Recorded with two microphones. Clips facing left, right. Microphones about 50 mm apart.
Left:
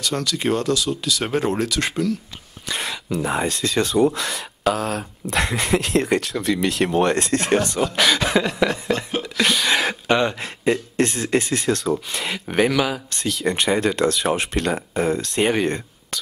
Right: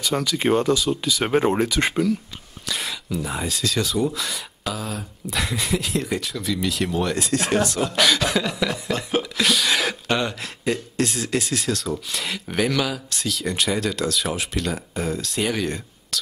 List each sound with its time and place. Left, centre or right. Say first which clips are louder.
0.0 s speech: right 1 dB; centre
2.7 s a sound: left 2 dB; left
3.2 s speech: left 5 dB; left
4.7 s speech: left 6 dB; left
7.8 s speech: left 1 dB; centre
13.5 s speech: left 5 dB; left